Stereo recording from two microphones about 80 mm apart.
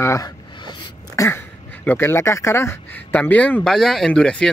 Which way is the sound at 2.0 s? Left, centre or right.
Left.